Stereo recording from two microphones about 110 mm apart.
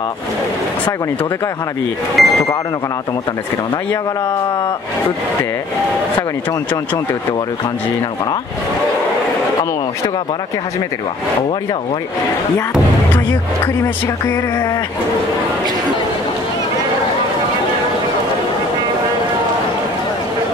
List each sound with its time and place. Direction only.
2.2 s speech: centre (ahead or behind)
14.0 s music: 20° left (ahead or behind)